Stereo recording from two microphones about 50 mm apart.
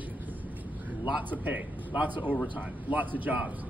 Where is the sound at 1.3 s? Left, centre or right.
Right.